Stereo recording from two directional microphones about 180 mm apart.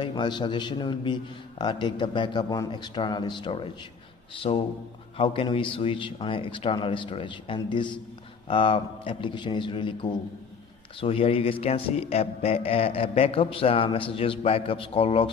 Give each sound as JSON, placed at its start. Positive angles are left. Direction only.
{"t": 0.0, "sound": "a man's voice", "side_deg": 25}